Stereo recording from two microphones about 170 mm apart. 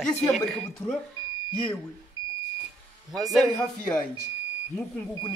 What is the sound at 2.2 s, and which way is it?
Smoke detector, 25° left (ahead or behind).